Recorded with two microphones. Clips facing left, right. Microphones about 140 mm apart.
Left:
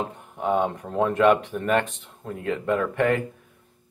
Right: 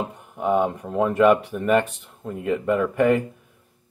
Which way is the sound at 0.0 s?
5° right (ahead or behind).